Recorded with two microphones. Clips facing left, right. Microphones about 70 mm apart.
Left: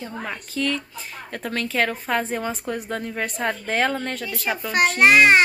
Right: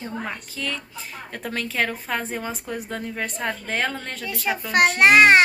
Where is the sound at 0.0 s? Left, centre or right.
Centre.